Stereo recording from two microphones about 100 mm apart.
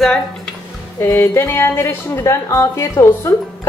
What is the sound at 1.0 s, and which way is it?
Speech, 30° left (ahead or behind).